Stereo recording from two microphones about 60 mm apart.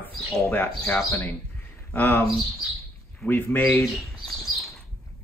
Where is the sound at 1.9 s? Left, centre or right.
Left.